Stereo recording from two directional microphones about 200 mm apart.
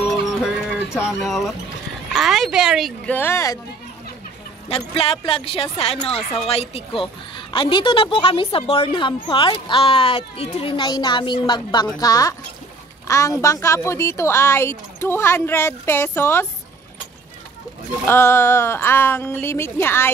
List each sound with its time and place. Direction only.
0.4 s livestock: centre (ahead or behind)
2.1 s speech: centre (ahead or behind)
3.2 s a woman's voice: 15° left (ahead or behind)
4.6 s a woman's voice: 30° left (ahead or behind); by 16.4 s 10° left (ahead or behind)
18.0 s a woman's voice: 10° left (ahead or behind)